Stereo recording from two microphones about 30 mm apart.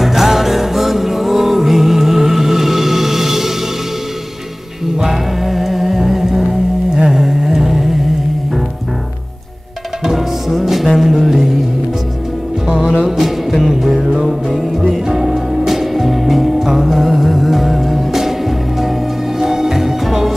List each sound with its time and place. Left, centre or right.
0.0 s music: centre
5.0 s music: centre
7.1 s a sound: centre
10.0 s music: centre
12.6 s music: right
13.0 s music: centre
13.7 s music: centre
15.0 s music: centre